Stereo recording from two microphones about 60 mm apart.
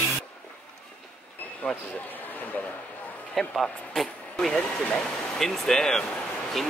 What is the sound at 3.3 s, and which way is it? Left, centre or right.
Speech, centre.